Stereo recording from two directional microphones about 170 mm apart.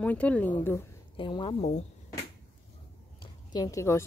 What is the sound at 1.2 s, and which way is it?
Speech, 30° left (ahead or behind).